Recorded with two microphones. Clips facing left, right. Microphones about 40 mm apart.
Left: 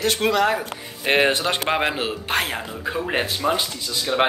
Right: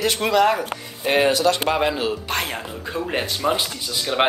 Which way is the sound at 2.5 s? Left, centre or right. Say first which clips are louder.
Left 2 dB; centre.